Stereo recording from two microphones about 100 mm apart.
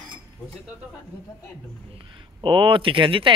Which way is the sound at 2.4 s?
60° right (ahead or behind).